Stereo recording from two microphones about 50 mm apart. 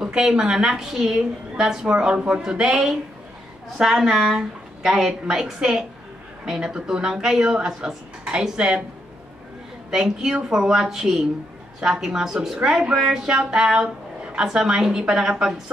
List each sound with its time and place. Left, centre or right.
0.0 s speech: centre
9.8 s speech: centre